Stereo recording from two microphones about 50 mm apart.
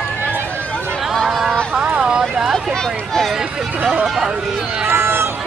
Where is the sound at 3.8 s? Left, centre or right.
Centre.